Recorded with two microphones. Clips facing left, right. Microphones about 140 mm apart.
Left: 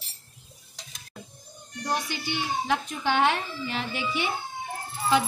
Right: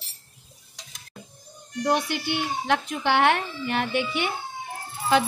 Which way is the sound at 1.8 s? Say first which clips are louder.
Right 6 dB; 60° right (ahead or behind).